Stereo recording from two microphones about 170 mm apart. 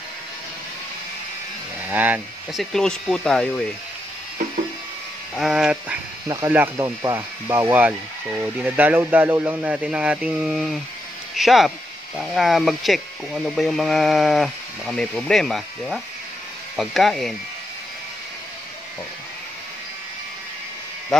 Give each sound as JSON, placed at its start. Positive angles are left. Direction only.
{"t": 1.9, "sound": "speech", "side_deg": -10}
{"t": 2.6, "sound": "speech", "side_deg": 5}
{"t": 5.3, "sound": "speech", "side_deg": 0}
{"t": 6.2, "sound": "speech", "side_deg": -20}